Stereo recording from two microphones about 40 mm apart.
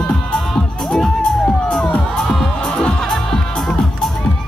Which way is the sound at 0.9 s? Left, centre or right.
Centre.